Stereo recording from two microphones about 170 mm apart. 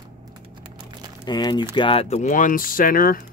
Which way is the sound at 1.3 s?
25° left (ahead or behind).